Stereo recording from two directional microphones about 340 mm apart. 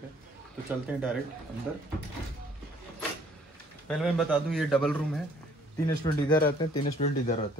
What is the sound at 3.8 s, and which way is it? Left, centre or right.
Speech, centre.